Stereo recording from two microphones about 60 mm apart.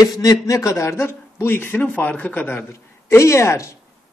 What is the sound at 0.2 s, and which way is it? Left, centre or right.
Speech, left.